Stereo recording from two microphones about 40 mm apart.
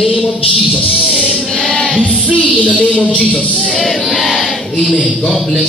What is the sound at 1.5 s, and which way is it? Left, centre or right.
Music, centre.